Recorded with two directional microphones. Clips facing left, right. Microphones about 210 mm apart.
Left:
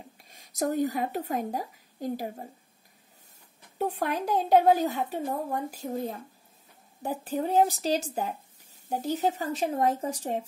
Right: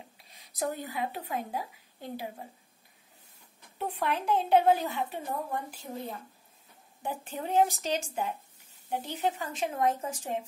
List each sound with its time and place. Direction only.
0.2 s a woman's voice: 45° left (ahead or behind)
3.7 s a woman's voice: 40° left (ahead or behind)